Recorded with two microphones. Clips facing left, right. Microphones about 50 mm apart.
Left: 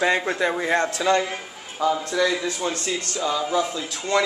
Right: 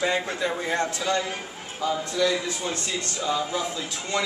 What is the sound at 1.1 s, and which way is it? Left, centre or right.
Speech, left.